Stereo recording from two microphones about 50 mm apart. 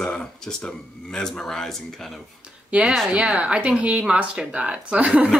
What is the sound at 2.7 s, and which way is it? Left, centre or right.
A woman's voice, right.